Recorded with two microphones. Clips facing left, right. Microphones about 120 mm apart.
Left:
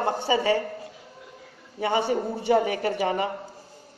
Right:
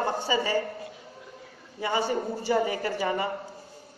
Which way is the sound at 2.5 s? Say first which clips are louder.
Left 4 dB; 70° left (ahead or behind).